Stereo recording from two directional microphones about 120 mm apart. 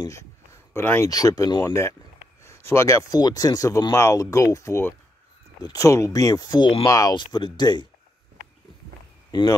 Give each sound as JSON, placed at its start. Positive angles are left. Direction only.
{"t": 0.0, "sound": "speech", "side_deg": 25}
{"t": 1.0, "sound": "speech", "side_deg": 30}
{"t": 3.1, "sound": "speech", "side_deg": 35}
{"t": 9.3, "sound": "speech", "side_deg": 35}